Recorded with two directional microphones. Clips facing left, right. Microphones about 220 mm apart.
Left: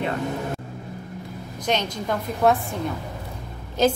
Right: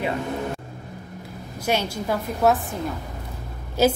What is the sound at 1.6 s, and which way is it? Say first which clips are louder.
A woman's voice: right 1 dB; 10° right (ahead or behind).